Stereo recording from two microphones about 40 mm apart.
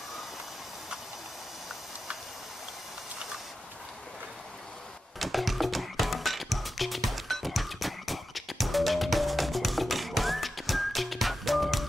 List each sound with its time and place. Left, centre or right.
5.2 s music: centre